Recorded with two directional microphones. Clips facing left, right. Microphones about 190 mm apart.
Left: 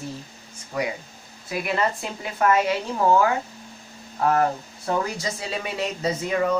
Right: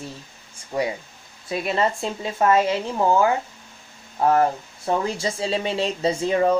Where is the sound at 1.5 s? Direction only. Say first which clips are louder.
Right 2 dB; 25° right (ahead or behind).